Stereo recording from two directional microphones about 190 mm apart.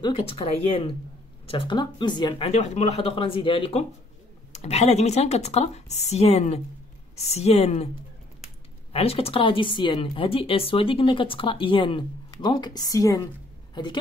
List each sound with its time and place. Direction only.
0.0 s speech: 30° left (ahead or behind)
8.9 s speech: 30° left (ahead or behind)